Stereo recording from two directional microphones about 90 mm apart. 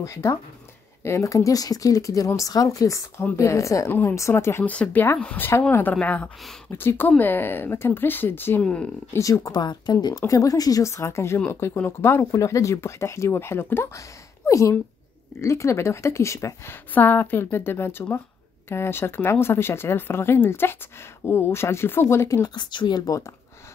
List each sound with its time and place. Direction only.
0.0 s speech: 35° left (ahead or behind)
4.6 s speech: 20° left (ahead or behind)
6.7 s speech: 25° left (ahead or behind)
9.2 s speech: 40° left (ahead or behind)
10.2 s speech: 40° left (ahead or behind)
16.9 s speech: 20° left (ahead or behind)
22.5 s speech: 55° left (ahead or behind); by 23.3 s 40° left (ahead or behind)